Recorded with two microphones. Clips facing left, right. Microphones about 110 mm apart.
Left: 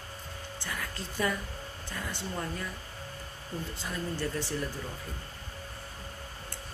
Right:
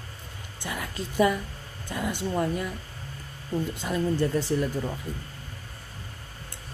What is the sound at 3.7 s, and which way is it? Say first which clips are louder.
Speech: right 9 dB; 20° right (ahead or behind).